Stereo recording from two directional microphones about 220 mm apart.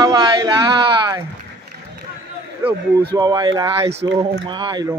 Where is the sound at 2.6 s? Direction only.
10° right (ahead or behind).